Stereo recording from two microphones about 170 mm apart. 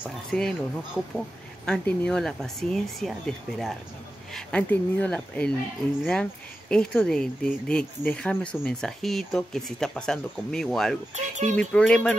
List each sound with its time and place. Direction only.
0.0 s speech: 5° left (ahead or behind)
6.7 s speech: 5° left (ahead or behind)
11.1 s speech: 45° right (ahead or behind)
11.5 s speech: 5° left (ahead or behind)